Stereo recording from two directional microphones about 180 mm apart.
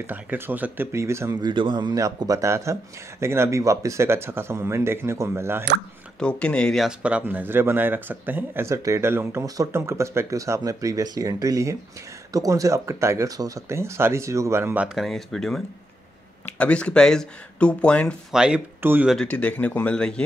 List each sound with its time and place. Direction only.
0.0 s speech: 10° right (ahead or behind)
1.5 s speech: 25° right (ahead or behind)
6.1 s speech: 5° left (ahead or behind); by 19.1 s 10° right (ahead or behind)
19.1 s speech: 5° left (ahead or behind)